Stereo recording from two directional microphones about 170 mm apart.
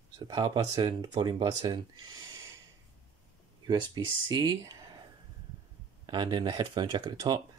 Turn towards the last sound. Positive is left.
turn(degrees=-25)  # may be behind; listen again after turning